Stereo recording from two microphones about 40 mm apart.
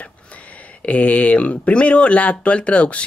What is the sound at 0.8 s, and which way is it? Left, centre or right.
Speech, left.